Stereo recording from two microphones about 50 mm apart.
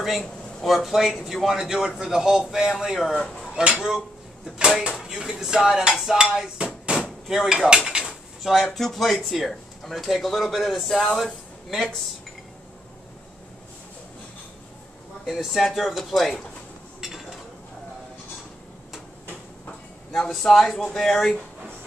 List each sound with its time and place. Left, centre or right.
0.6 s a man's voice: centre
3.0 s speech: centre
3.5 s a man's voice: centre
6.1 s cutlery: centre
7.2 s dishes: centre
15.2 s speech: centre
17.0 s a sound: centre
20.2 s speech: centre